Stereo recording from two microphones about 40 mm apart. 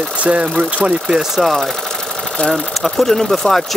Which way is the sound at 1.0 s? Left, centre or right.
Centre.